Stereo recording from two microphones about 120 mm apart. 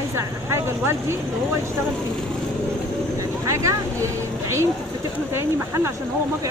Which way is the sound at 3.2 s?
25° right (ahead or behind).